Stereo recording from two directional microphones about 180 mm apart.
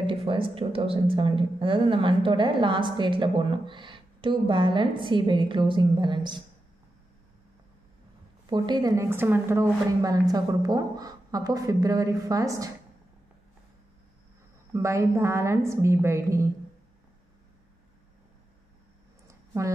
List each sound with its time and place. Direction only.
0.0 s speech: 30° right (ahead or behind)
8.5 s speech: 25° right (ahead or behind)
14.7 s a woman's voice: 15° right (ahead or behind)
19.2 s a sound: 15° right (ahead or behind)